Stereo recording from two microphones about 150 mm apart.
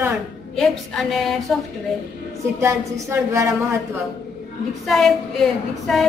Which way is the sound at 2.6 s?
20° right (ahead or behind).